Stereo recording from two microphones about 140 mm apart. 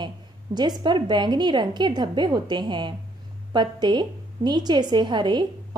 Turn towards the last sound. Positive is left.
turn(degrees=-35)  # may be behind; listen again after turning